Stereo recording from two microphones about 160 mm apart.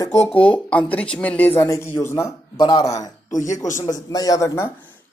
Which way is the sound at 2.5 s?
25° left (ahead or behind).